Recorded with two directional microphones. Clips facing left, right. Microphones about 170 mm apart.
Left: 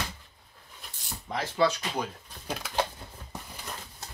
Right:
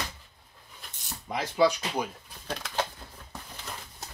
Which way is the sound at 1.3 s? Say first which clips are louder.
Right 2 dB; 10° right (ahead or behind).